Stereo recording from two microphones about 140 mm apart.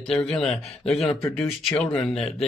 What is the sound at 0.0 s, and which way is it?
Speech, 5° left (ahead or behind).